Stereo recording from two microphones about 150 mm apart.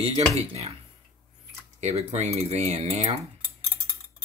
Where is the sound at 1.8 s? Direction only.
45° right (ahead or behind).